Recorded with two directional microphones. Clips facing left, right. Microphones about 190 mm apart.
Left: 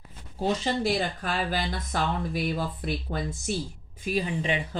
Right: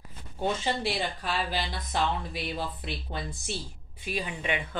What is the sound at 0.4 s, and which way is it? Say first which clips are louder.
Speech: left 3 dB; 40° left (ahead or behind).